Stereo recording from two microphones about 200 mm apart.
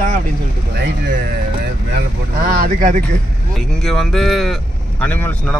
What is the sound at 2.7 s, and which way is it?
Speech, 40° right (ahead or behind).